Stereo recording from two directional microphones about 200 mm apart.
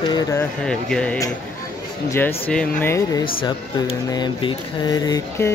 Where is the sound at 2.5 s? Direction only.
5° left (ahead or behind).